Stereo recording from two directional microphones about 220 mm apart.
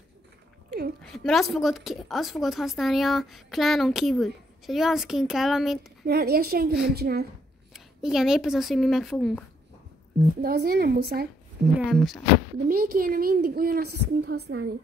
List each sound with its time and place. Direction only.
1.0 s a woman's voice: centre (ahead or behind)
6.0 s a woman's voice: 45° right (ahead or behind)
7.7 s speech: centre (ahead or behind)
10.4 s a woman's voice: 45° right (ahead or behind)
11.8 s a woman's voice: centre (ahead or behind)
12.6 s a woman's voice: 40° right (ahead or behind)